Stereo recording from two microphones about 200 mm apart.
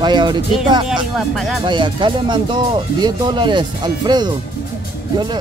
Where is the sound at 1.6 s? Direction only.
25° right (ahead or behind).